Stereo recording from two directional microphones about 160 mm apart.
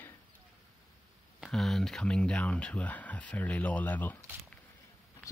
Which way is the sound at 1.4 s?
Centre (ahead or behind).